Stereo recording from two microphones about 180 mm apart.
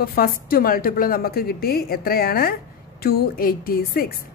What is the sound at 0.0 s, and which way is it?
A woman's voice, 55° left (ahead or behind).